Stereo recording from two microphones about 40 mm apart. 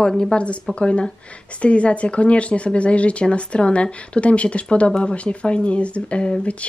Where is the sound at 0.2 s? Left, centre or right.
Left.